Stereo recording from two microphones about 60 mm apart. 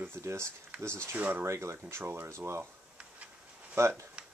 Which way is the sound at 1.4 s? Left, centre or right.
Right.